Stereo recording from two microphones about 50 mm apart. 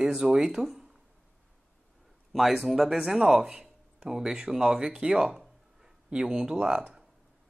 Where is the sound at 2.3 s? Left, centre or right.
Centre.